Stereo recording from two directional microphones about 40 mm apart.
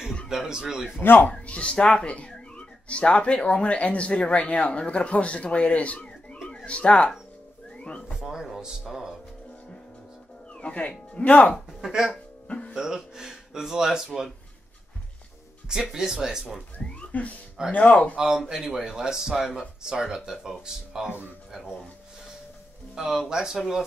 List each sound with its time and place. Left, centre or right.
0.3 s speech: centre
1.3 s a man's voice: left
7.7 s music: left
8.2 s speech: centre
10.5 s a man's voice: left
12.4 s music: left
12.7 s speech: centre
15.7 s speech: centre
17.1 s a man's voice: left
18.1 s speech: centre
22.9 s speech: centre